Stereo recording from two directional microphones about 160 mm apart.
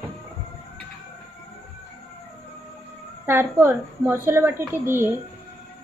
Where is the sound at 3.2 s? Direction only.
15° right (ahead or behind).